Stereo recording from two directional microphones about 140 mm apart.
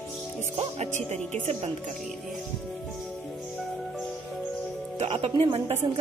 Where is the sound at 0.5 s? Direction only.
50° right (ahead or behind).